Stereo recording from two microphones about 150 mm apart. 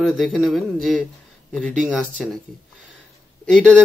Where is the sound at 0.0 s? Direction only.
Centre (ahead or behind).